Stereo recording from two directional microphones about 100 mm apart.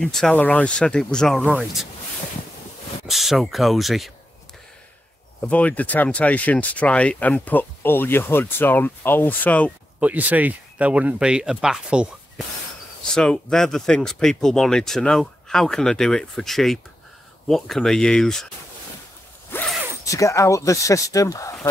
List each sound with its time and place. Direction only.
0.0 s speech: 5° left (ahead or behind)
3.1 s speech: centre (ahead or behind)
5.4 s speech: 15° left (ahead or behind)
9.9 s speech: 15° right (ahead or behind)
13.1 s speech: 5° left (ahead or behind)
19.5 s a sound: 25° left (ahead or behind)
20.1 s speech: 30° left (ahead or behind)